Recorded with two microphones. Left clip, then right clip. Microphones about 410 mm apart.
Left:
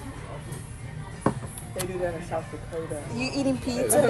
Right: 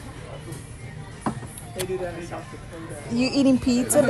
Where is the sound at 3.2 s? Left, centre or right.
Right.